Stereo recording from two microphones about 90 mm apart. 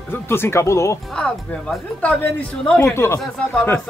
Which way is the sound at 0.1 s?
25° left (ahead or behind).